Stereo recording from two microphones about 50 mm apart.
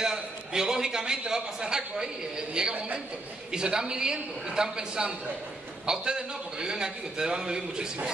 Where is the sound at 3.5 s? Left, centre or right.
Centre.